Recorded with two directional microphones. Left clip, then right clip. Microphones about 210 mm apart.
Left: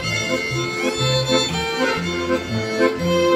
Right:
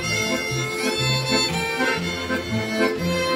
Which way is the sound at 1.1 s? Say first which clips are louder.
Left 3 dB; 35° right (ahead or behind).